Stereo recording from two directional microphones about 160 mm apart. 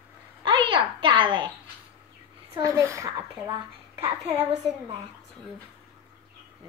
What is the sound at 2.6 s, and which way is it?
Speech, 20° right (ahead or behind).